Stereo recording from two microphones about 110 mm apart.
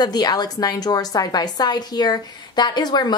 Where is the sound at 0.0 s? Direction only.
40° left (ahead or behind).